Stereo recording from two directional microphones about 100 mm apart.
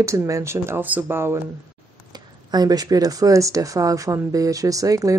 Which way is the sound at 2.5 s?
40° right (ahead or behind).